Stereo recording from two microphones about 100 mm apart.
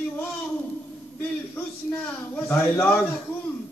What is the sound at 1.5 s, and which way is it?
A man's voice, 20° left (ahead or behind).